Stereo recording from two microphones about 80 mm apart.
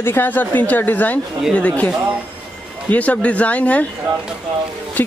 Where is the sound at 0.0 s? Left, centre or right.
Left.